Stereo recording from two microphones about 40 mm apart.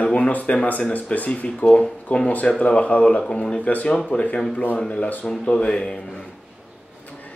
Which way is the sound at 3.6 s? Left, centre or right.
Left.